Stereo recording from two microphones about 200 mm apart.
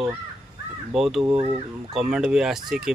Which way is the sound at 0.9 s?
Centre (ahead or behind).